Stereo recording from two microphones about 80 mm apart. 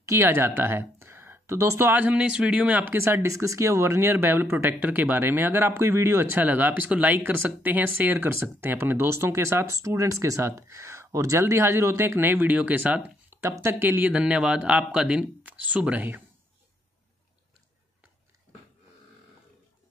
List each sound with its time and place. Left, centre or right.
0.0 s speech: right
1.9 s speech: centre
3.0 s speech: right
6.3 s speech: right
13.4 s speech: right
14.1 s speech: centre